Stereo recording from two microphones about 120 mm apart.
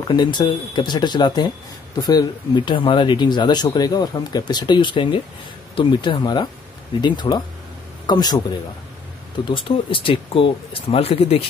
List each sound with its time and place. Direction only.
0.1 s speech: 40° left (ahead or behind)
9.5 s speech: 45° left (ahead or behind)